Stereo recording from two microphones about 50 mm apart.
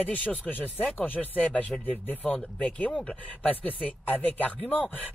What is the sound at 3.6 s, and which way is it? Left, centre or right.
Speech, left.